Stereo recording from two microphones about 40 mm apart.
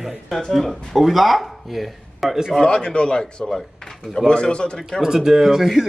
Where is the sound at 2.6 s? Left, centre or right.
Left.